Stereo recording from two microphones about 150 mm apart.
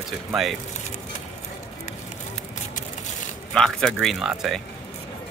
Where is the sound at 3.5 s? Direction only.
5° left (ahead or behind).